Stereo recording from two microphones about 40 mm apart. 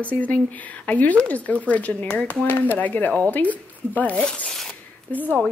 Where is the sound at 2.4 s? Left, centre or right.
Left.